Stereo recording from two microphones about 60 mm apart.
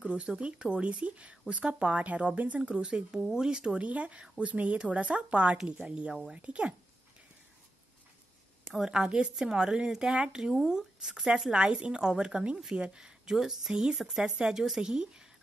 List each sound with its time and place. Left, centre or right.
0.0 s speech: centre
2.8 s speech: centre
8.7 s speech: centre